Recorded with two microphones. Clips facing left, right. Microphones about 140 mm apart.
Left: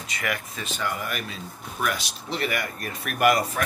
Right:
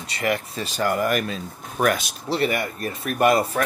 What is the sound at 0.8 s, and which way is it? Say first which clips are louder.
Speech: right 10 dB; 45° right (ahead or behind).